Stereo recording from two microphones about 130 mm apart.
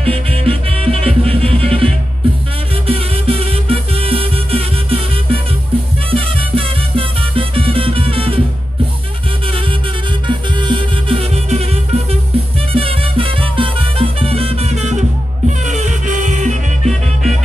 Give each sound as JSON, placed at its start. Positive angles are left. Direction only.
{"t": 0.0, "sound": "music", "side_deg": -50}
{"t": 2.9, "sound": "music", "side_deg": -50}
{"t": 10.2, "sound": "music", "side_deg": -40}
{"t": 16.8, "sound": "music", "side_deg": 0}